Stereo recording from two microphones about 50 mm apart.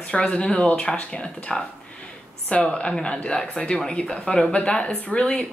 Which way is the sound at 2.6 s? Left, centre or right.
Centre.